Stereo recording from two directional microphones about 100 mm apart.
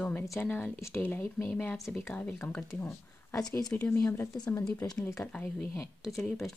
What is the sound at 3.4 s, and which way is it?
Speech, 40° left (ahead or behind).